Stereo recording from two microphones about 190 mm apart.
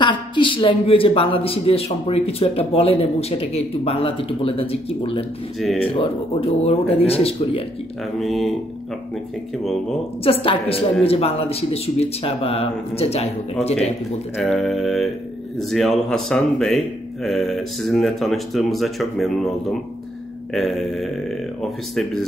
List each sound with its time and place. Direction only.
0.0 s speech: 25° left (ahead or behind)
8.2 s speech: centre (ahead or behind)
10.2 s a woman's voice: 30° left (ahead or behind)
14.3 s speech: centre (ahead or behind)
20.5 s speech: centre (ahead or behind)